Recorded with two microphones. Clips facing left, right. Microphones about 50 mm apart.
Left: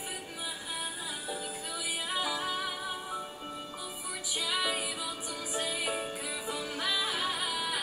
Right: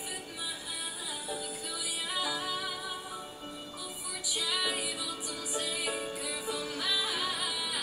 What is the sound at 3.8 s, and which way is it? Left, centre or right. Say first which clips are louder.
Music: left 1 dB; left.